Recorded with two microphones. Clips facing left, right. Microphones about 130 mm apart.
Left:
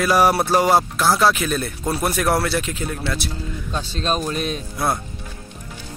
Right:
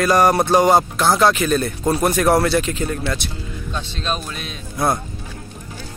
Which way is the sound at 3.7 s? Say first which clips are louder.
Left 2 dB; 40° left (ahead or behind).